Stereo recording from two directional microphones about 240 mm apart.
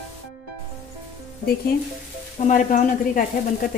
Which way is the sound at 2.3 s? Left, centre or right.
Left.